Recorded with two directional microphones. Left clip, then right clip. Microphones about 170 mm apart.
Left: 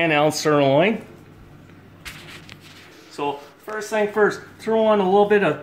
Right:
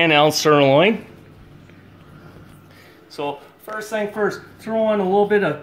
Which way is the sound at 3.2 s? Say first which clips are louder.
Even; 65° right (ahead or behind).